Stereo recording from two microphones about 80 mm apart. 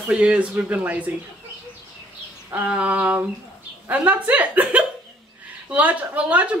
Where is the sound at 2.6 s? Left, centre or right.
Centre.